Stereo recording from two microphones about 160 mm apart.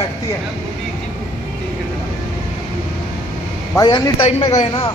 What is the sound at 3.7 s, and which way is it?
Speech, 25° left (ahead or behind).